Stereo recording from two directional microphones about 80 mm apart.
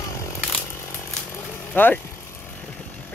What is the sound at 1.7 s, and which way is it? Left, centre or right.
Speech, left.